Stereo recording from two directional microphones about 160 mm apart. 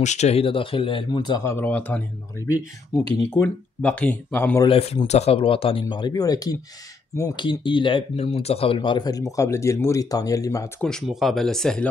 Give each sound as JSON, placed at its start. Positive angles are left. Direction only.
{"t": 0.0, "sound": "speech", "side_deg": 45}
{"t": 3.3, "sound": "speech", "side_deg": 10}
{"t": 4.6, "sound": "speech", "side_deg": 35}
{"t": 10.8, "sound": "speech", "side_deg": 5}